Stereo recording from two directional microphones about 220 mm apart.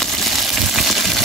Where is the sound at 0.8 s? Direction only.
Centre (ahead or behind).